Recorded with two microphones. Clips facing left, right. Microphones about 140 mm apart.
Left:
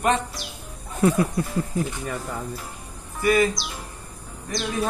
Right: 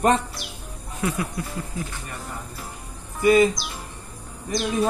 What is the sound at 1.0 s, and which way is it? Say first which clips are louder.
Speech: left 7 dB; 35° left (ahead or behind).